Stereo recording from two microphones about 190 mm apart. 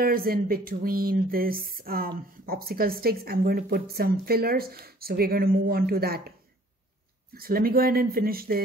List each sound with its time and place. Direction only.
0.0 s speech: 50° right (ahead or behind)
7.3 s speech: 50° right (ahead or behind)